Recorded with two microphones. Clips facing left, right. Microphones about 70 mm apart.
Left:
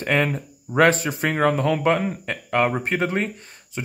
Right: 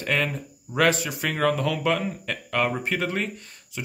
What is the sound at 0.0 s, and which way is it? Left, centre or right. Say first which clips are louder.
Speech: left 4 dB; left.